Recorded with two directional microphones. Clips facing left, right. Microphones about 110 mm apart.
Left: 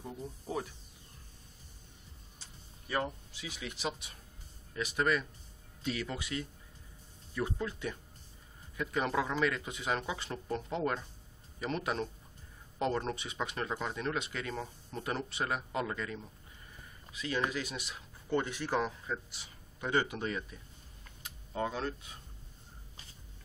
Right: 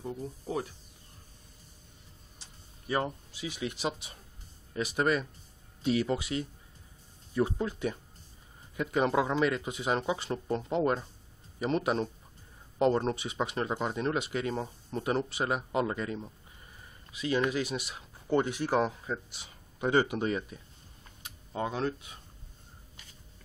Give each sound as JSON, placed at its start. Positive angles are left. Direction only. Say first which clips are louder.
{"t": 0.0, "sound": "speech", "louder": "right 5 dB", "side_deg": -5}
{"t": 3.3, "sound": "speech", "louder": "right 7 dB", "side_deg": -20}
{"t": 21.5, "sound": "speech", "louder": "right 3 dB", "side_deg": -15}